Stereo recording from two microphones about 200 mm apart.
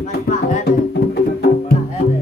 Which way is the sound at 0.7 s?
55° left (ahead or behind).